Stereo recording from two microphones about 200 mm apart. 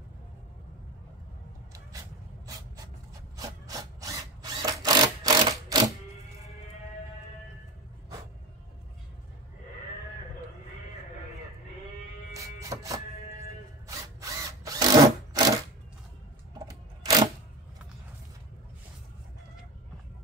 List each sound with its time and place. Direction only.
3.3 s wood: 15° right (ahead or behind)
12.4 s music: 15° right (ahead or behind)
13.8 s drill: 15° right (ahead or behind)
16.5 s a sound: 20° right (ahead or behind)